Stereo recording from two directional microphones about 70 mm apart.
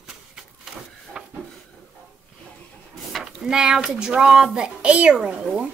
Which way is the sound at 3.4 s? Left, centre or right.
Centre.